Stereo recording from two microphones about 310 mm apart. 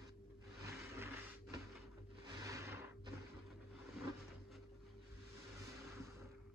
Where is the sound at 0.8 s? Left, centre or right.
Centre.